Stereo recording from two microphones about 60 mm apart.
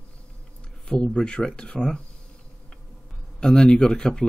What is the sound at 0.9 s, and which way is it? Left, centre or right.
Speech, centre.